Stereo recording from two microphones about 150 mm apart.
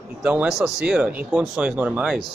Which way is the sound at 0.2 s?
10° right (ahead or behind).